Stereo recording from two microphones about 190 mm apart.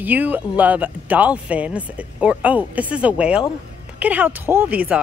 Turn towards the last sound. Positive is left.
turn(degrees=-10)  # may be behind; listen again after turning